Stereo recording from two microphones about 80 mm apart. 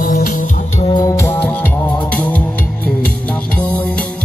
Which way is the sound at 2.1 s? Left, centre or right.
Centre.